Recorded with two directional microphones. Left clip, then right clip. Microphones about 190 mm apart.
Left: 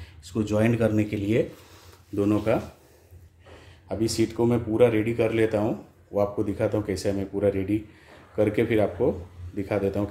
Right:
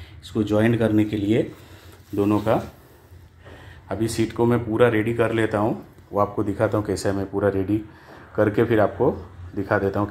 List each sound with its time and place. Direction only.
0.3 s speech: 10° left (ahead or behind)
3.9 s speech: 5° left (ahead or behind)